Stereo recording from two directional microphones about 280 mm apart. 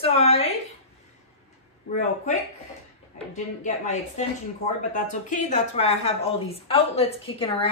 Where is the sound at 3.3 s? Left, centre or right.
Left.